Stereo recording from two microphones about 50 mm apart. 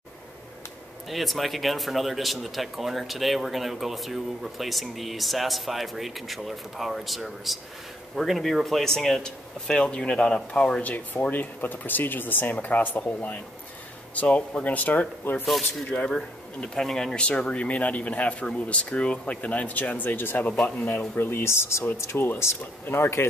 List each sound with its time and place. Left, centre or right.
1.0 s speech: centre
10.8 s speech: left
16.1 s speech: centre; by 21.1 s left
21.2 s speech: left